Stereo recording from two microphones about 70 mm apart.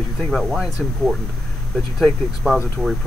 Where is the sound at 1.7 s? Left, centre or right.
Centre.